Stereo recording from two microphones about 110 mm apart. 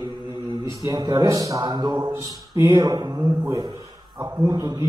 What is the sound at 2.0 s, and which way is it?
A man's voice, 30° right (ahead or behind).